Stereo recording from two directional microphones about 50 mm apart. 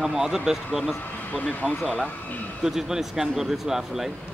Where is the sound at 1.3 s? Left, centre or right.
Left.